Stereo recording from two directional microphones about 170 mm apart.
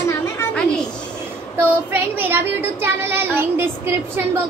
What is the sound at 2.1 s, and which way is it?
Speech, 10° right (ahead or behind).